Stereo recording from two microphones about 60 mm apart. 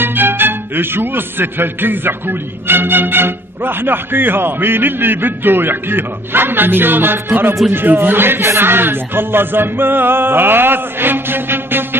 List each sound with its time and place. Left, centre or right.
0.0 s speech: right